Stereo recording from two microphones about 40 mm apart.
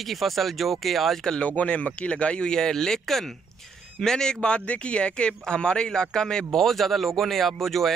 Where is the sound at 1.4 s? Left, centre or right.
Left; by 4.3 s centre.